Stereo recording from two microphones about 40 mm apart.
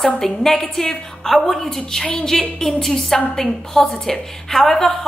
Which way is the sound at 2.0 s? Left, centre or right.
Left.